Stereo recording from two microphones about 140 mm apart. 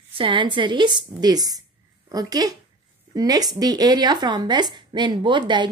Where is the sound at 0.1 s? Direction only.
35° right (ahead or behind).